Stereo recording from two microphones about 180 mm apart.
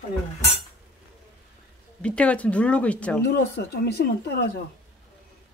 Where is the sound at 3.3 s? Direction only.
60° left (ahead or behind).